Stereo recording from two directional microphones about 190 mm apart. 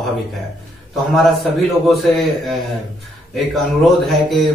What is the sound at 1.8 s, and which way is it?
A man's voice, centre (ahead or behind).